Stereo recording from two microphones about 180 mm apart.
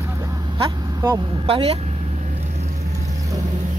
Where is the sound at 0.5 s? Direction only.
30° right (ahead or behind).